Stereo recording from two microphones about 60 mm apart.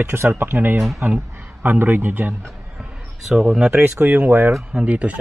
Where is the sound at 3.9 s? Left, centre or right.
Right.